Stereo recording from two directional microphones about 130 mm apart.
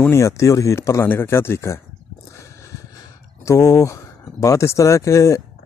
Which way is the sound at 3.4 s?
25° left (ahead or behind).